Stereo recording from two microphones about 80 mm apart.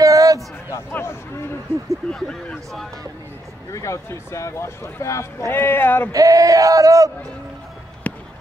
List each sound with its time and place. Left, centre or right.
0.0 s a sound: right
0.9 s speech: left
2.0 s speech: centre
3.7 s speech: left
5.5 s speech: left
6.1 s male singing: right
8.0 s a sound: centre